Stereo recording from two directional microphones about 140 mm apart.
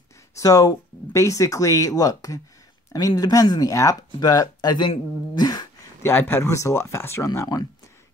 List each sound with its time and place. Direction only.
0.4 s speech: 25° left (ahead or behind)
6.0 s speech: 15° left (ahead or behind)